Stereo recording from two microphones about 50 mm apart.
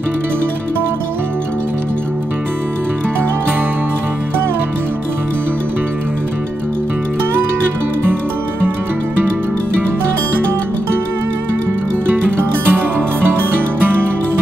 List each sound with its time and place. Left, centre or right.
8.0 s music: right
12.1 s music: right